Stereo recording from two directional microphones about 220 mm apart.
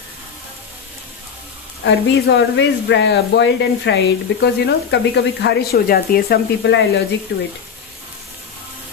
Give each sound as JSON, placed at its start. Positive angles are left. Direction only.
{"t": 1.9, "sound": "speech", "side_deg": 55}